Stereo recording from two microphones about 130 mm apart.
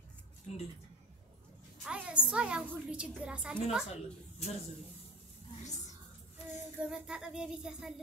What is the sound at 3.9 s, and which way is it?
Speech, 55° left (ahead or behind).